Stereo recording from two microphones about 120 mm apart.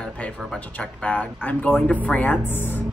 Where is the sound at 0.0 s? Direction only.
5° left (ahead or behind).